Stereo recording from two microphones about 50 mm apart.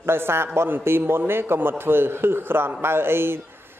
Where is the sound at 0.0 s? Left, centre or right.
Right.